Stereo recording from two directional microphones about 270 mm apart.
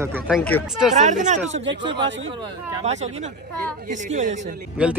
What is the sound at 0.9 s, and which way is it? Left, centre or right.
Speech, right.